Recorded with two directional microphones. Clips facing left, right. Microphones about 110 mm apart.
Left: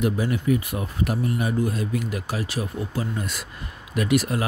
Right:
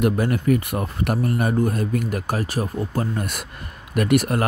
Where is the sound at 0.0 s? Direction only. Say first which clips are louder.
Right 3 dB; 55° right (ahead or behind).